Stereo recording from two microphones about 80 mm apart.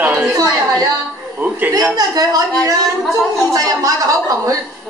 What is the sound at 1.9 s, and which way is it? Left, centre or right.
Speech, right.